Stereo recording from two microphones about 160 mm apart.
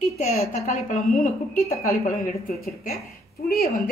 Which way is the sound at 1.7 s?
20° left (ahead or behind).